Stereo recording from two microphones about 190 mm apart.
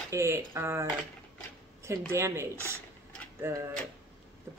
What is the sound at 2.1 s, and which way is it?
Speech, 15° right (ahead or behind).